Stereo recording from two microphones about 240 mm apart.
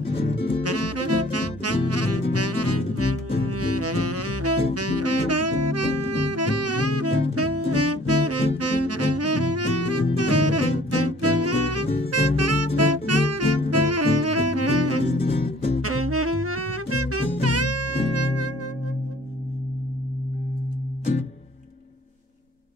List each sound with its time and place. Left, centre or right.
0.6 s saxophone: right
12.1 s music: right
15.1 s music: left
15.8 s music: right